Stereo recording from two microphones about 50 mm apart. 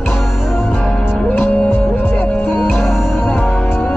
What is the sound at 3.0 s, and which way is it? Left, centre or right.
Music, left.